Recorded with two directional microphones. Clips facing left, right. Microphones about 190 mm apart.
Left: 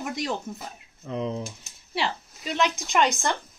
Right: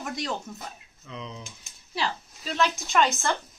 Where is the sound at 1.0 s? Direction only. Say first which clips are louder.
Left 10 dB; 50° left (ahead or behind).